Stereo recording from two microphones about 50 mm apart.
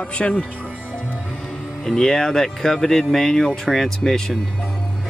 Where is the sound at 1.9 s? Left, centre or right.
Centre.